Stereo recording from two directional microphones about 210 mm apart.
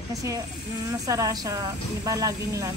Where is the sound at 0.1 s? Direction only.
15° right (ahead or behind).